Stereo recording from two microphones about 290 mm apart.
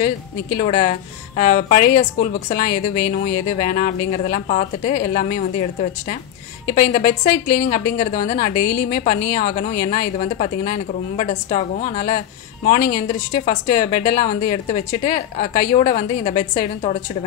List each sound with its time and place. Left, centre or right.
0.6 s a woman's voice: left